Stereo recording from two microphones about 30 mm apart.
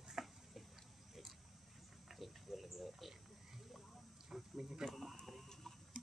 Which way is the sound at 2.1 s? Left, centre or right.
Centre.